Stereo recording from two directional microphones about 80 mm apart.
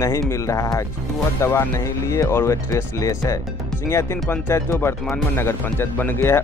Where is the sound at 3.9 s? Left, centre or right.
Left.